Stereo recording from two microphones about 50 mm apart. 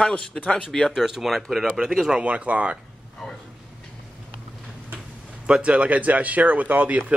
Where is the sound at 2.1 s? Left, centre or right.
Right.